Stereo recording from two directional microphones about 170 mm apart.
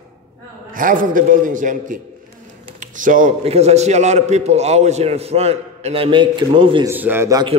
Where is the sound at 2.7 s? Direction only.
50° right (ahead or behind).